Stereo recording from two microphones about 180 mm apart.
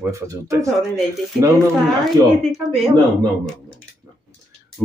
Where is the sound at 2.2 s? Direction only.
20° right (ahead or behind).